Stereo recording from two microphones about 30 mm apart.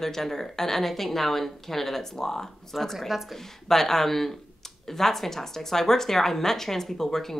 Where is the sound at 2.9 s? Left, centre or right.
Centre.